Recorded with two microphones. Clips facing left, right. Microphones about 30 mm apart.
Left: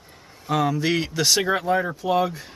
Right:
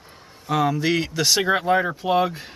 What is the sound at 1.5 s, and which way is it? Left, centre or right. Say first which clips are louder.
Speech: right 2 dB; centre.